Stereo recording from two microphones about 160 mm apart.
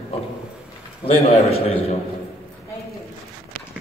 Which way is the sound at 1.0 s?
40° left (ahead or behind).